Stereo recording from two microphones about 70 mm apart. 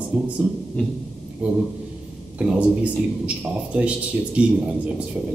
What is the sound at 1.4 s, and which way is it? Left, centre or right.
Speech, centre.